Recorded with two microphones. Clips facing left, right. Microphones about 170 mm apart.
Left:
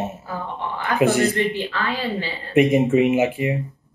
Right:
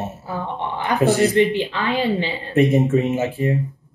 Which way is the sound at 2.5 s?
15° left (ahead or behind).